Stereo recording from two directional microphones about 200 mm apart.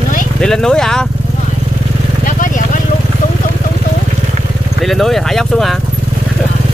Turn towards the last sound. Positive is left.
turn(degrees=0)  # may be behind; listen again after turning